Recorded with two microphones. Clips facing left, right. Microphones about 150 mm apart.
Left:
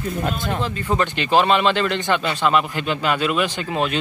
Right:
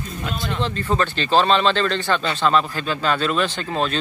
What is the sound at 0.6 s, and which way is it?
Speech, 10° left (ahead or behind).